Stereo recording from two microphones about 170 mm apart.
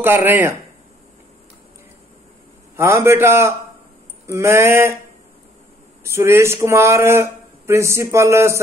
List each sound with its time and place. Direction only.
0.0 s speech: 10° right (ahead or behind)
2.7 s speech: 15° right (ahead or behind)
6.0 s speech: 15° right (ahead or behind)